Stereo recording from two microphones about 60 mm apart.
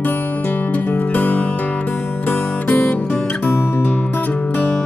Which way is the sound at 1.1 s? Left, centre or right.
Left.